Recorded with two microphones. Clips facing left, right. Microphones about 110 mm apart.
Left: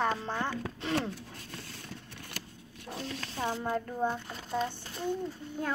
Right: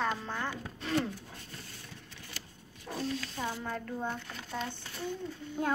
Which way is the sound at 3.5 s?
20° left (ahead or behind).